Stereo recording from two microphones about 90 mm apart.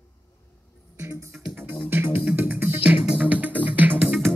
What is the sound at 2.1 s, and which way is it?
Music, 20° right (ahead or behind).